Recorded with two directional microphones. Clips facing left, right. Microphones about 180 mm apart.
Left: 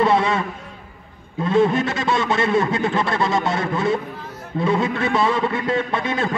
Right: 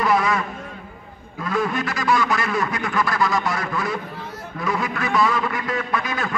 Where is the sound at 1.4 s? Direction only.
25° left (ahead or behind).